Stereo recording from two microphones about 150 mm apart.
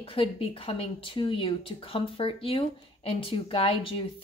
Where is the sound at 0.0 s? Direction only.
35° left (ahead or behind).